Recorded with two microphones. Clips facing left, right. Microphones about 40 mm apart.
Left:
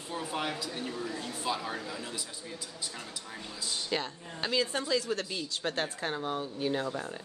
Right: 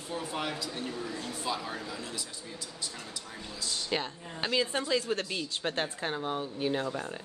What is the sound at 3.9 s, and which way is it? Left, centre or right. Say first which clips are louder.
Speech: right 1 dB; centre.